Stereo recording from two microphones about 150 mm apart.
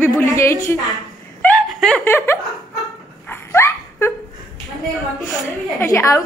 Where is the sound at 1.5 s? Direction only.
Centre (ahead or behind).